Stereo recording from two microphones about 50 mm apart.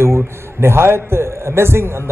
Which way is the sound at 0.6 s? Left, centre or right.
Right.